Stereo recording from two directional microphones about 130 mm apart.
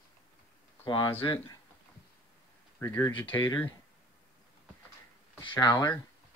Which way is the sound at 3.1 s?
10° left (ahead or behind).